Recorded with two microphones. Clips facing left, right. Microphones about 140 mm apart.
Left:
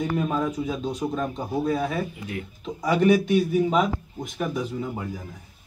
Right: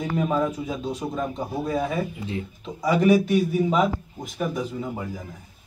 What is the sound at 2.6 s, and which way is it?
A man's voice, 5° right (ahead or behind).